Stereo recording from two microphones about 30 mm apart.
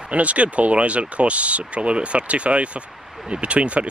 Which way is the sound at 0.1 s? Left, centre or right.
Right.